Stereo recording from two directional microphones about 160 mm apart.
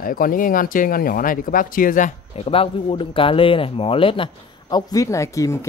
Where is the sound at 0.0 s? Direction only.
60° left (ahead or behind).